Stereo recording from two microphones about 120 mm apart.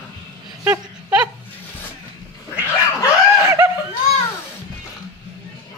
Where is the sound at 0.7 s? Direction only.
10° right (ahead or behind).